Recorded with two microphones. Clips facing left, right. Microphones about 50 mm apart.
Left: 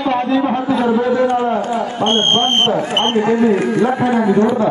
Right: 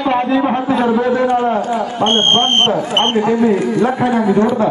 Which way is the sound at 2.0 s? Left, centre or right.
Right.